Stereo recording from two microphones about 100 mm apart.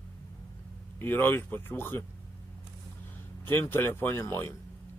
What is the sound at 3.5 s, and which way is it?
Speech, 20° left (ahead or behind).